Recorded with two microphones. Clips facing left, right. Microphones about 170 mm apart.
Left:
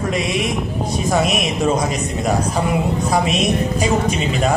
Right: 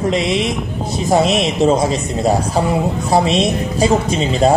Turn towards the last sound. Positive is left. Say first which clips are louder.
# right 4 dB
turn(degrees=-30)  # may be behind; listen again after turning